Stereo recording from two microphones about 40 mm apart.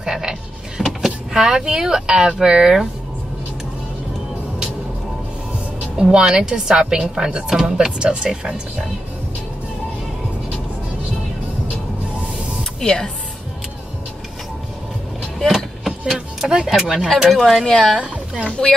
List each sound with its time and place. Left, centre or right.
0.0 s frog: centre
1.0 s a woman's voice: centre
5.9 s a woman's voice: centre
12.8 s speech: centre
15.3 s a sound: centre
16.6 s a woman's voice: centre
17.3 s a woman's voice: centre
17.9 s speech: right